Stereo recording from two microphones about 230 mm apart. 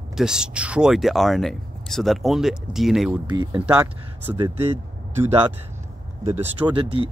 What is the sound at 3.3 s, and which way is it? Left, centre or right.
Speech, centre.